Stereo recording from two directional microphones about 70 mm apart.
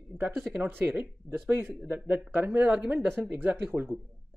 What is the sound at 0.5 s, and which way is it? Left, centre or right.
Speech, right.